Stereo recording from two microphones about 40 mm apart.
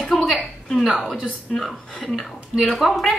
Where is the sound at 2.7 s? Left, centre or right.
Centre.